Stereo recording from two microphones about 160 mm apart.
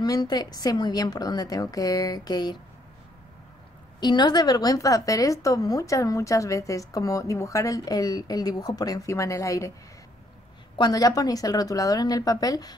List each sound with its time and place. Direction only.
0.0 s a woman's voice: 25° left (ahead or behind)
4.0 s a woman's voice: 25° left (ahead or behind)
10.8 s a woman's voice: 25° left (ahead or behind)